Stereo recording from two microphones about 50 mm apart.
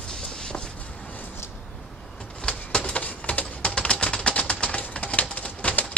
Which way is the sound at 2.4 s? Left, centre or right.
Centre.